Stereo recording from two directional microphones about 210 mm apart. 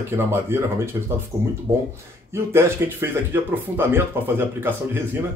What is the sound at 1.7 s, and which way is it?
Speech, 30° right (ahead or behind).